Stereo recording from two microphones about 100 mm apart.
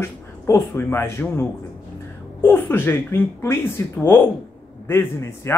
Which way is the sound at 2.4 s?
20° left (ahead or behind).